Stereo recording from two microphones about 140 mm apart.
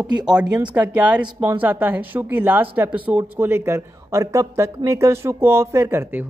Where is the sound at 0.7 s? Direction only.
10° right (ahead or behind).